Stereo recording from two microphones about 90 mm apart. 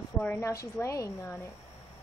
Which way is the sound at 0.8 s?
35° left (ahead or behind).